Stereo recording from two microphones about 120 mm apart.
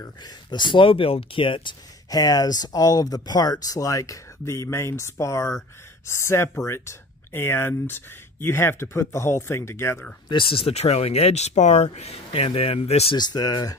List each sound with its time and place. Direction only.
0.0 s speech: 35° left (ahead or behind)
10.2 s speech: 45° left (ahead or behind)
13.1 s speech: 35° left (ahead or behind)